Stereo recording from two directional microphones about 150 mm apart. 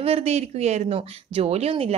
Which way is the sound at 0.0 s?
45° right (ahead or behind).